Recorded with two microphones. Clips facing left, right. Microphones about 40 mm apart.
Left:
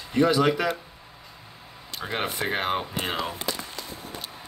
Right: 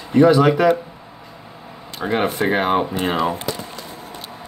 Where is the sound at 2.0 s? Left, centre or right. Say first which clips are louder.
Right 9 dB; centre.